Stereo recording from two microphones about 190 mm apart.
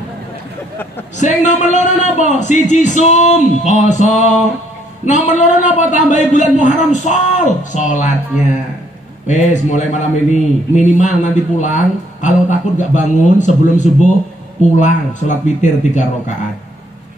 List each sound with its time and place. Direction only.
1.1 s a man's voice: 40° left (ahead or behind)